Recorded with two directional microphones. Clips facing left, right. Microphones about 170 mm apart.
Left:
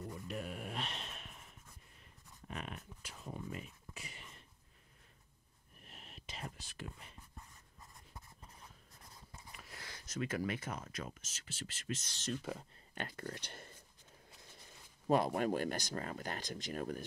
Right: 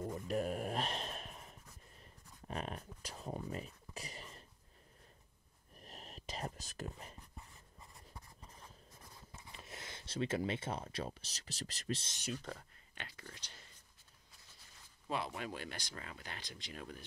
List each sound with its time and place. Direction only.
0.3 s a sound: 40° right (ahead or behind)
5.8 s whispering: 40° right (ahead or behind)
9.5 s speech: 25° right (ahead or behind)
12.4 s speech: 15° left (ahead or behind)
12.9 s speech: 50° left (ahead or behind)
15.0 s speech: 45° left (ahead or behind)